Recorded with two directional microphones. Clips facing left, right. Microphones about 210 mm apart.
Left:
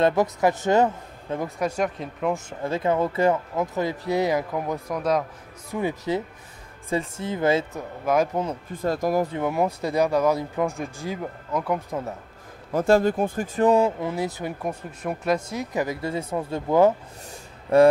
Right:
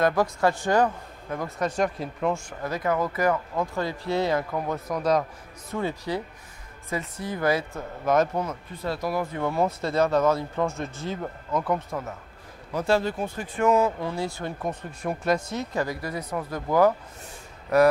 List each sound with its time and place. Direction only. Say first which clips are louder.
0.0 s speech: left 2 dB; 20° left (ahead or behind)
1.8 s speech: even; 5° left (ahead or behind)
2.3 s speech: left 3 dB; 25° left (ahead or behind); by 5.2 s 5° left (ahead or behind)
5.7 s speech: left 3 dB; 15° left (ahead or behind)
8.0 s speech: even; 10° left (ahead or behind)
8.7 s speech: left 5 dB; 45° left (ahead or behind)
9.3 s speech: left 1 dB; 15° left (ahead or behind)
12.7 s speech: left 5 dB; 50° left (ahead or behind)
13.6 s speech: left 2 dB; 30° left (ahead or behind)
13.9 s speech: left 2 dB; 20° left (ahead or behind)